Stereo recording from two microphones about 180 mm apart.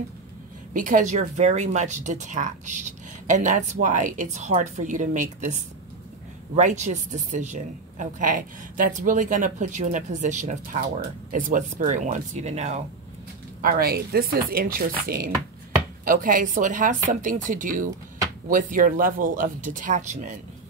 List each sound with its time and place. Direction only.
0.7 s a woman's voice: 45° right (ahead or behind)
13.6 s a woman's voice: 55° right (ahead or behind)